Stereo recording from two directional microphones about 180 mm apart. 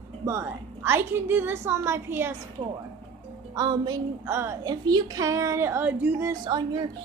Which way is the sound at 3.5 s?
20° right (ahead or behind).